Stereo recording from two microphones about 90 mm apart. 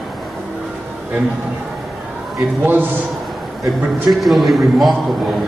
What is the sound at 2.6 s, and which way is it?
Speech, 20° right (ahead or behind).